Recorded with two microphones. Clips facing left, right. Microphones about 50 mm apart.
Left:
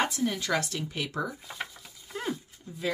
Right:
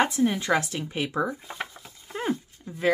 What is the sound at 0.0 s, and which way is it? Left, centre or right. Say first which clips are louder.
Speech: right 5 dB; right.